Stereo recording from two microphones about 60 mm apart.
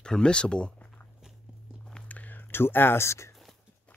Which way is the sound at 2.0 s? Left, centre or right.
Left.